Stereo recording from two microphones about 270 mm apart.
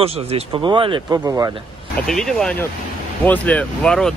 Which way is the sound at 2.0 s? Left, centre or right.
Centre.